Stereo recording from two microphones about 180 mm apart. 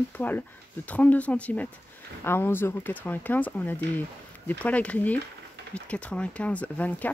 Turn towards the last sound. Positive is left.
turn(degrees=10)  # may be behind; listen again after turning